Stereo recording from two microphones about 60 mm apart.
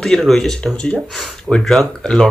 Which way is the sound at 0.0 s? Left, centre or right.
Centre.